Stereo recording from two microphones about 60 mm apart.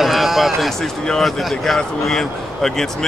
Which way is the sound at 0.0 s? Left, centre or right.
Centre.